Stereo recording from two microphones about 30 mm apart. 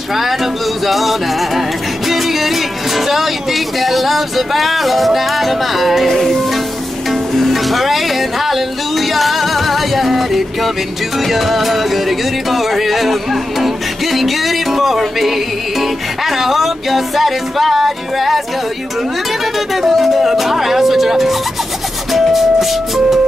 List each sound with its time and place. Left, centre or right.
0.1 s speech: centre
2.0 s music: centre
3.1 s speech: centre
7.1 s music: centre
11.1 s speech: centre
15.8 s music: centre
20.0 s music: centre